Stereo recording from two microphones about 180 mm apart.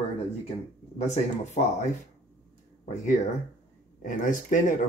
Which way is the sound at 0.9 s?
40° left (ahead or behind).